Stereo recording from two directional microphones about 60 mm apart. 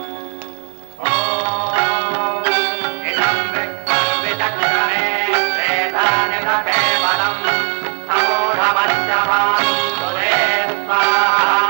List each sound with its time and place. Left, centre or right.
1.0 s music: right